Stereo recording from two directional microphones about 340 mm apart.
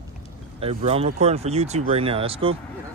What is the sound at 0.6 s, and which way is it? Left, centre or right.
Speech, centre.